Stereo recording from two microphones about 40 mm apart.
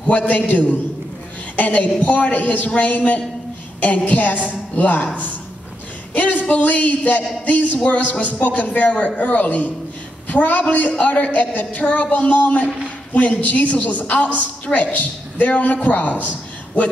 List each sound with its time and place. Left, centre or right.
0.3 s a woman's voice: left
6.1 s a sound: left
6.5 s a woman's voice: left